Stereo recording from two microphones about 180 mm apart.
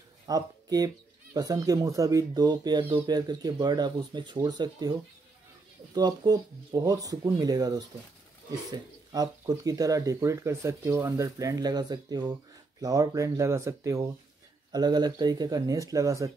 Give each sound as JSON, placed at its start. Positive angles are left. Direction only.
{"t": 0.3, "sound": "speech", "side_deg": -20}
{"t": 5.9, "sound": "speech", "side_deg": -20}
{"t": 9.1, "sound": "speech", "side_deg": -20}